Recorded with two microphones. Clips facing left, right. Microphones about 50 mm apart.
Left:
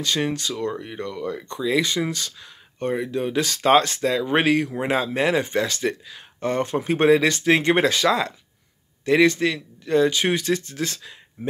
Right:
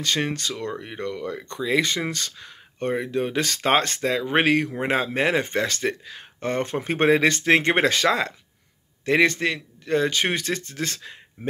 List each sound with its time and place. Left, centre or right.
0.0 s speech: right
2.9 s speech: right